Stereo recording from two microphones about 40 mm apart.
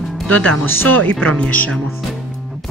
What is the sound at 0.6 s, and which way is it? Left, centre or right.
Speech, left.